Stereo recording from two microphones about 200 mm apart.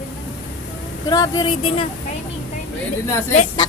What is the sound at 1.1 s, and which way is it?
Speech, 20° left (ahead or behind).